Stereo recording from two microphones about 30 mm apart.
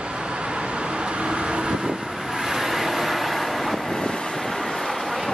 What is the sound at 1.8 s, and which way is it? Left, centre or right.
Vehicle, centre.